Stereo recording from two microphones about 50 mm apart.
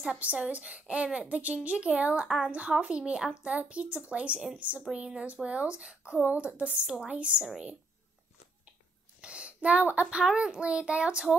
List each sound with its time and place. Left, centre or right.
0.2 s speech: right
9.2 s a sound: right
10.3 s speech: centre